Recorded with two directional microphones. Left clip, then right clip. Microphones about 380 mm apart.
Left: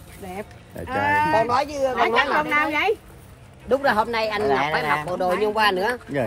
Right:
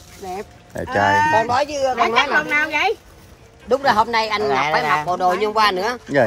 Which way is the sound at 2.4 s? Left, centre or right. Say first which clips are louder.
Right 3 dB; centre.